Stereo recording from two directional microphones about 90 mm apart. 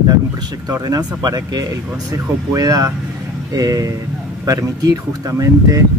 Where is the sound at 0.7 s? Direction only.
45° right (ahead or behind).